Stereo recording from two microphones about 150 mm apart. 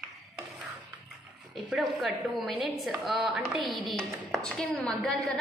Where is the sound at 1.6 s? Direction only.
Centre (ahead or behind).